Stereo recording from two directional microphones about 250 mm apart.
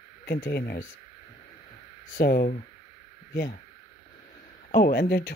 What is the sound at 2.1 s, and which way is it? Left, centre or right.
Speech, left.